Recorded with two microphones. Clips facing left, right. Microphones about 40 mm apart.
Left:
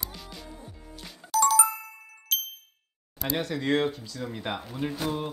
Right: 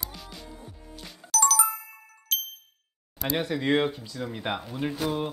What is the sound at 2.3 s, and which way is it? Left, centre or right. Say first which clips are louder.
Ding: even; centre.